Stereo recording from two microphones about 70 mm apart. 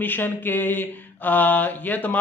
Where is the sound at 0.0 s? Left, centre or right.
Left.